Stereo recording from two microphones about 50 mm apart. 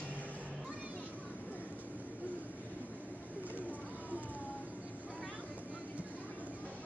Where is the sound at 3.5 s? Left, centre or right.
Right.